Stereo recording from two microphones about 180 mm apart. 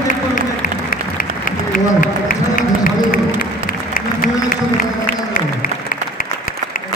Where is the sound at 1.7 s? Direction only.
50° left (ahead or behind).